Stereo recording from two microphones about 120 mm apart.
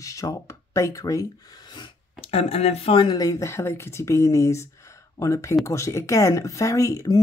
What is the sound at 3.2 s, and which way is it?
Speech, 30° left (ahead or behind).